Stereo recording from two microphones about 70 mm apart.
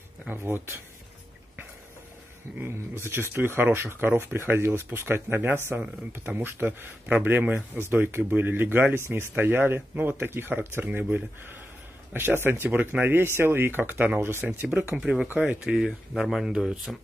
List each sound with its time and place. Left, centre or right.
0.3 s speech: right
2.6 s speech: right
15.0 s speech: centre